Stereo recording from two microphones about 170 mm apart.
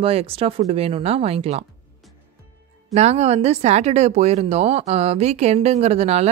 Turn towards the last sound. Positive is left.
turn(degrees=-40)  # may be behind; listen again after turning